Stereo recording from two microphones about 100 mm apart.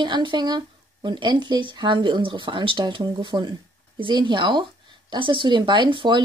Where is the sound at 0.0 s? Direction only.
50° right (ahead or behind).